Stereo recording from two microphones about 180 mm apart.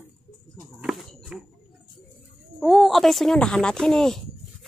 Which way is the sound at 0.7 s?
Centre (ahead or behind).